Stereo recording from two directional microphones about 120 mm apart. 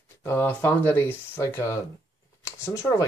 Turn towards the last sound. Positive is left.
turn(degrees=25)  # may be behind; listen again after turning